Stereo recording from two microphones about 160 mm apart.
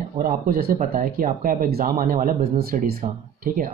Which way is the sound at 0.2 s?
65° right (ahead or behind).